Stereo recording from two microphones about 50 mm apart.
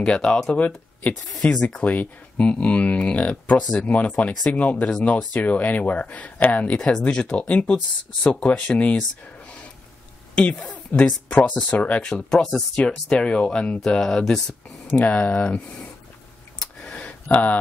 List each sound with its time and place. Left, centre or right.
0.0 s speech: centre
0.6 s speech: left
10.9 s speech: left
11.2 s speech: left
12.0 s speech: centre
14.9 s speech: left
15.4 s speech: centre
17.0 s a sound: left